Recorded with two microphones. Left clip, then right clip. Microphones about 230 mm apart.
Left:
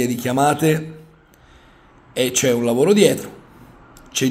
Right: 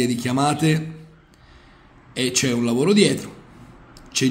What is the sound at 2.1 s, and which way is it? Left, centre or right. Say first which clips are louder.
A man's voice: left 4 dB; centre.